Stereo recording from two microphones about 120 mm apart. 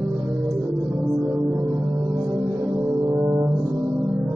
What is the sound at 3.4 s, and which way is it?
Music, centre (ahead or behind).